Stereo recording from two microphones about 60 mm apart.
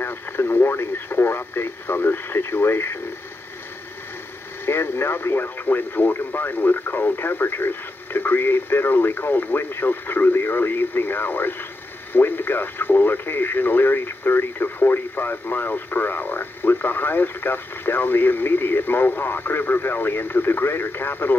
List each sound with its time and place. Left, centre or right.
0.0 s speech: left
4.6 s speech: left